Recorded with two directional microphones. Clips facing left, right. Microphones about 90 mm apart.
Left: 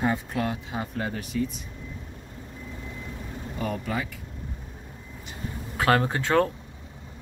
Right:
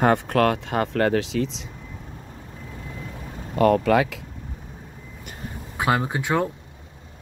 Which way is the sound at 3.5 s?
90° right.